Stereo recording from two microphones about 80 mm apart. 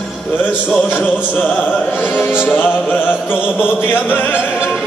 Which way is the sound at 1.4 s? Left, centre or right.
Centre.